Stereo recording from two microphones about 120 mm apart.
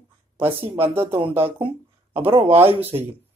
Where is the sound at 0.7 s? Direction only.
20° right (ahead or behind).